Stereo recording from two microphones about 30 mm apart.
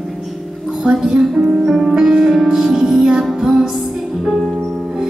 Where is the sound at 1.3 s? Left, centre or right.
Right.